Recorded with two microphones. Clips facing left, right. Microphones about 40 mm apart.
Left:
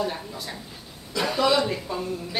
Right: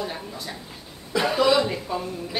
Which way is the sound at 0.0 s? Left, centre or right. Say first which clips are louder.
Left 2 dB; centre.